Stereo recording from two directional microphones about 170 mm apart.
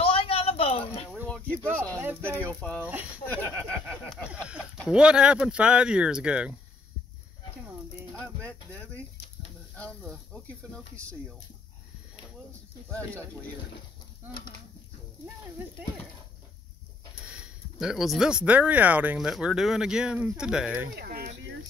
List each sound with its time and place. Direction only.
0.0 s a sound: 35° left (ahead or behind)
1.5 s speech: 10° right (ahead or behind)
2.4 s speech: 10° left (ahead or behind)
2.8 s speech: 10° right (ahead or behind)
3.3 s speech: 10° left (ahead or behind)
4.1 s speech: 5° right (ahead or behind)
8.1 s a sound: 5° left (ahead or behind)
9.8 s speech: 5° left (ahead or behind)
17.3 s speech: 5° right (ahead or behind)
20.9 s speech: 70° right (ahead or behind); by 21.5 s 85° right